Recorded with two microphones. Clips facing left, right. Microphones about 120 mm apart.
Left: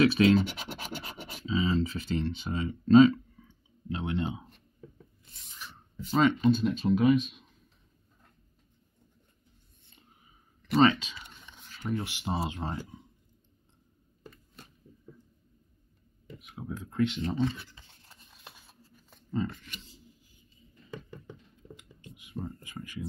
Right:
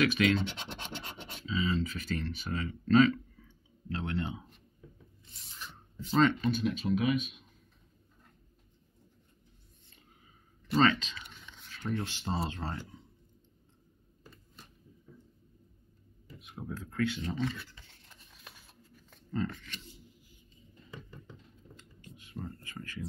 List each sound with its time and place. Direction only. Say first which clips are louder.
0.0 s speech: left 5 dB; 30° left (ahead or behind)
0.7 s scratch: left 3 dB; 5° left (ahead or behind)
1.4 s speech: left 4 dB; 30° left (ahead or behind)
5.6 s a sound: left 2 dB; 5° left (ahead or behind)
6.4 s speech: left 6 dB; 30° left (ahead or behind)
10.8 s speech: left 4 dB; 15° left (ahead or behind)
16.3 s a sound: left 2 dB; 5° left (ahead or behind)
16.7 s speech: left 4 dB; 20° left (ahead or behind)
18.0 s scissors: left 3 dB; 35° left (ahead or behind)
19.0 s speech: left 2 dB; 15° left (ahead or behind)
22.0 s a sound: left 4 dB; 15° left (ahead or behind)